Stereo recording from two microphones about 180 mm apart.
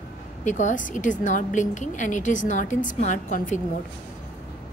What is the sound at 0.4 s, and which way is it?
A woman's voice, 40° left (ahead or behind).